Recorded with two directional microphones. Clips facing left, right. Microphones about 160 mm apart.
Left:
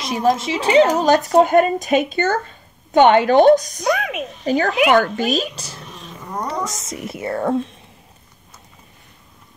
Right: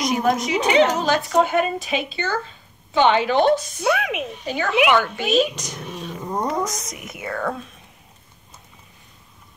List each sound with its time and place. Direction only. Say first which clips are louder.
0.2 s a woman's voice: left 2 dB; 30° left (ahead or behind)
3.8 s speech: left 1 dB; 5° right (ahead or behind)
4.5 s speech: left 3 dB; 40° left (ahead or behind)